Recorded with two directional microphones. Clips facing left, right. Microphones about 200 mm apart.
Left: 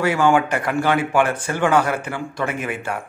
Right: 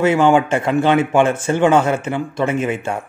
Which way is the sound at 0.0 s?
20° right (ahead or behind).